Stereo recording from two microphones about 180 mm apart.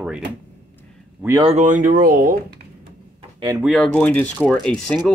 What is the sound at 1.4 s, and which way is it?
Speech, 40° right (ahead or behind).